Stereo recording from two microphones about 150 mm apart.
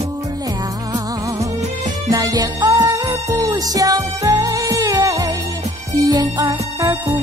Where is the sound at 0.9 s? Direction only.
20° right (ahead or behind).